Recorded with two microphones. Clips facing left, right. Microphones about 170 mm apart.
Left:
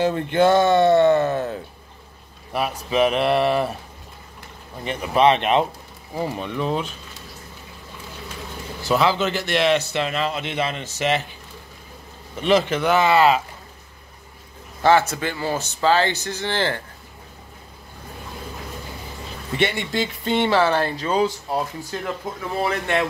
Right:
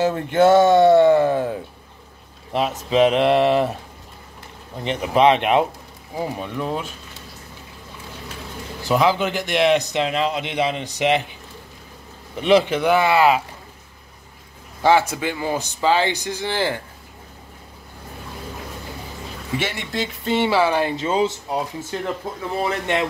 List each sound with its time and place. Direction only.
0.0 s a man's voice: 5° right (ahead or behind)
4.8 s a man's voice: 20° right (ahead or behind)
8.8 s a man's voice: 15° right (ahead or behind)
12.4 s a man's voice: 15° right (ahead or behind)
14.8 s a man's voice: 10° right (ahead or behind)
19.6 s speech: centre (ahead or behind)
20.9 s speech: 20° right (ahead or behind)